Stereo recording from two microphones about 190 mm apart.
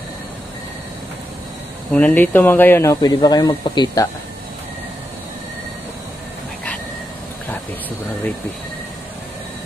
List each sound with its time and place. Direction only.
2.0 s speech: 10° left (ahead or behind)